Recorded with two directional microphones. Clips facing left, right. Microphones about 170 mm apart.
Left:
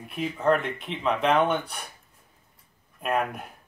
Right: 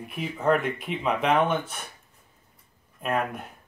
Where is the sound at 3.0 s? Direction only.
Centre (ahead or behind).